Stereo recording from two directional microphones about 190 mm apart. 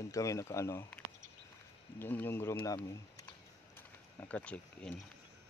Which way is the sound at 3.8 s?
10° left (ahead or behind).